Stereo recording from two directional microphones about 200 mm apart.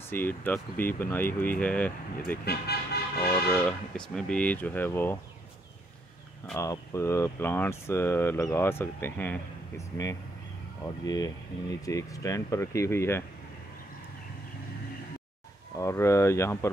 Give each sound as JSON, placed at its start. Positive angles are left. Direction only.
{"t": 0.1, "sound": "speech", "side_deg": 10}
{"t": 2.4, "sound": "speech", "side_deg": 55}
{"t": 3.4, "sound": "speech", "side_deg": 0}
{"t": 6.5, "sound": "speech", "side_deg": 15}
{"t": 15.7, "sound": "speech", "side_deg": 15}